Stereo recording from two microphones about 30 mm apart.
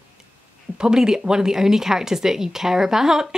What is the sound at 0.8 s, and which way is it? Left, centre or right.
Speech, right.